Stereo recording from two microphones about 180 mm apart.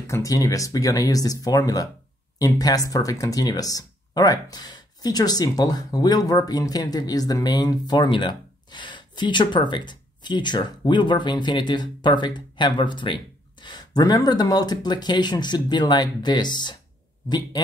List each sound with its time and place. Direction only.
0.0 s speech: 15° left (ahead or behind)